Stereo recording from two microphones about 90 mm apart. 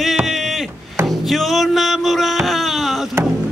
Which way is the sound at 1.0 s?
Centre (ahead or behind).